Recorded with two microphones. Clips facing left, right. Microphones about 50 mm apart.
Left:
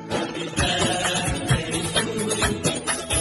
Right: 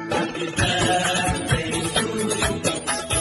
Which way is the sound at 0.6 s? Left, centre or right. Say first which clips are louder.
Right 2 dB; right.